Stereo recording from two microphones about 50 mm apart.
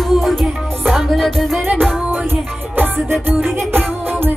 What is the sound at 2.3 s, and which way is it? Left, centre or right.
Music, right.